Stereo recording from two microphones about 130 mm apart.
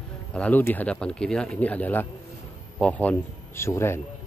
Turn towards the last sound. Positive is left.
turn(degrees=20)  # may be behind; listen again after turning